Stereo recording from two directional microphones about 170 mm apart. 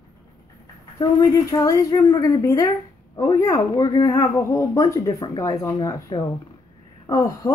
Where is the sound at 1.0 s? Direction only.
20° left (ahead or behind).